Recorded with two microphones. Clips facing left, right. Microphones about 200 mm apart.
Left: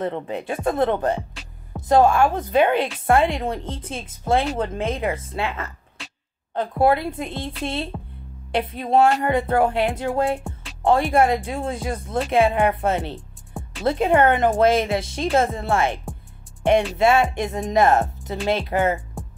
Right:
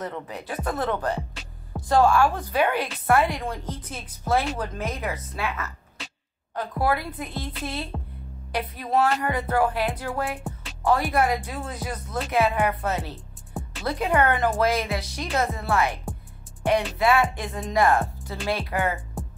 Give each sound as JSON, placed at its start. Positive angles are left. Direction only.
{"t": 0.0, "sound": "speech", "side_deg": 25}
{"t": 10.4, "sound": "music", "side_deg": 0}
{"t": 10.8, "sound": "speech", "side_deg": 25}
{"t": 13.1, "sound": "music", "side_deg": 0}
{"t": 13.8, "sound": "speech", "side_deg": 25}
{"t": 17.0, "sound": "speech", "side_deg": 25}
{"t": 19.2, "sound": "music", "side_deg": 0}